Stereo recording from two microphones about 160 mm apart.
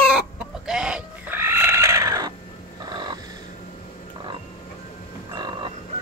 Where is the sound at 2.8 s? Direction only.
25° right (ahead or behind).